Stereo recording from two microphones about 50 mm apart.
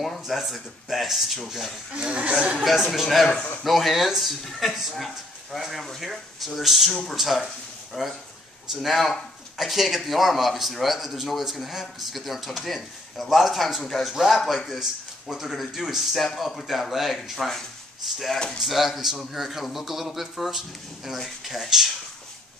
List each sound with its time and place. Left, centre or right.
0.2 s speech: centre
2.0 s speech: centre
2.5 s speech: centre
7.4 s a sound: centre
8.8 s speech: centre